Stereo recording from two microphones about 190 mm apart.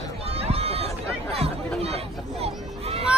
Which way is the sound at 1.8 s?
30° right (ahead or behind).